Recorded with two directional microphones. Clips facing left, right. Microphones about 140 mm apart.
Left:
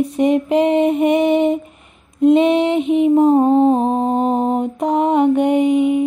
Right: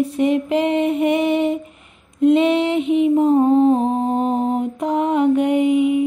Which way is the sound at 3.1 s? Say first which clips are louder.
Left 4 dB; 40° left (ahead or behind).